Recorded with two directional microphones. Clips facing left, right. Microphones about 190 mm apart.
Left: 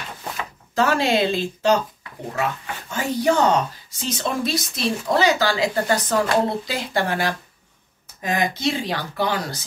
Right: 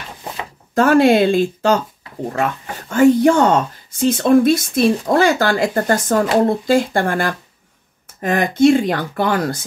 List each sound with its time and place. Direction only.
0.2 s a sound: 25° right (ahead or behind)
0.7 s speech: 50° right (ahead or behind)
2.9 s speech: 55° right (ahead or behind)